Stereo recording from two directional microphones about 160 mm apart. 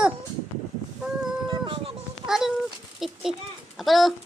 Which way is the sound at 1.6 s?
35° right (ahead or behind).